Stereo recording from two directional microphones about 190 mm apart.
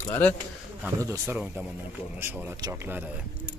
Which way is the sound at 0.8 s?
15° right (ahead or behind).